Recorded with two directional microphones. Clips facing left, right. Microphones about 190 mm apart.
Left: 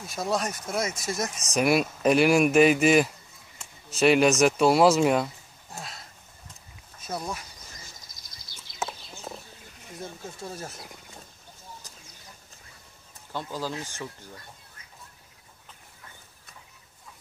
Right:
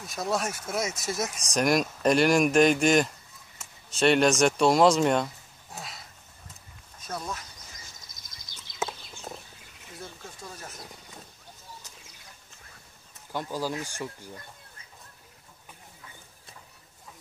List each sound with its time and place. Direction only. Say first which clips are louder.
0.0 s speech: left 1 dB; centre (ahead or behind)
7.1 s speech: left 2 dB; 10° left (ahead or behind)
10.4 s speech: left 6 dB; 30° left (ahead or behind)
13.3 s speech: right 2 dB; 10° right (ahead or behind)